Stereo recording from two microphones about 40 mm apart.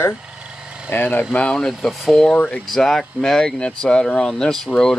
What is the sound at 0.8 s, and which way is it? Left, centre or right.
Speech, left.